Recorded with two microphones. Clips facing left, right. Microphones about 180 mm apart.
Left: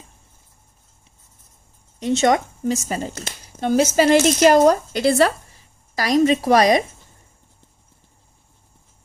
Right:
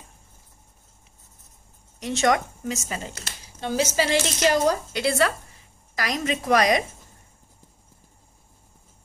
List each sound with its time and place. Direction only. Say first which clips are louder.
2.0 s a woman's voice: left 5 dB; 25° left (ahead or behind)
3.6 s a woman's voice: left 8 dB; 50° left (ahead or behind); by 6.8 s 30° left (ahead or behind)